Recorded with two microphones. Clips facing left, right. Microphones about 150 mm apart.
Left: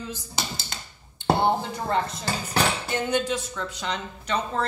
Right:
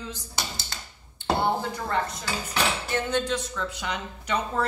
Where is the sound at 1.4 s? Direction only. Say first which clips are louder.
Left 2 dB; 25° left (ahead or behind).